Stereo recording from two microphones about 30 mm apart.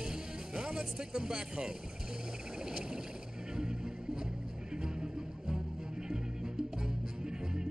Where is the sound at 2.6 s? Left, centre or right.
Right.